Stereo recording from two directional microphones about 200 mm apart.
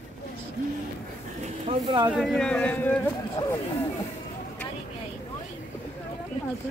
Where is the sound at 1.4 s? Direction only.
25° right (ahead or behind).